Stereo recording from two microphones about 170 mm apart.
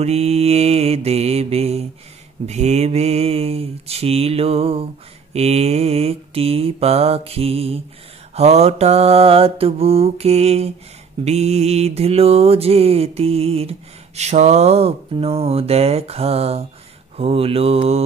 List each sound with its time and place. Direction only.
0.0 s mantra: 40° right (ahead or behind)